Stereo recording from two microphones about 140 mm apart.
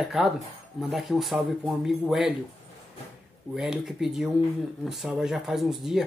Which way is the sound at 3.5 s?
Centre (ahead or behind).